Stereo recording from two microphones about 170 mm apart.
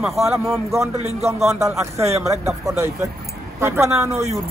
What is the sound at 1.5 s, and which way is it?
Speech, 15° right (ahead or behind).